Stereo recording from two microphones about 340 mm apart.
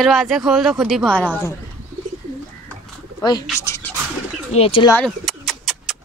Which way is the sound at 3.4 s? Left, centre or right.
Centre.